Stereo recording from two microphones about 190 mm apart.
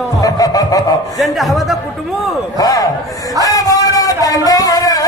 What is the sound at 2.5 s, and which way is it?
Speech, 20° left (ahead or behind).